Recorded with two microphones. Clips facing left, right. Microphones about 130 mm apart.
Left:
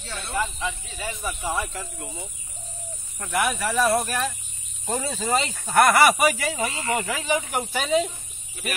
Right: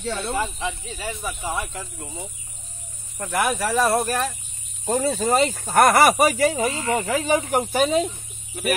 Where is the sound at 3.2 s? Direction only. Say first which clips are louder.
Right 2 dB; 40° right (ahead or behind).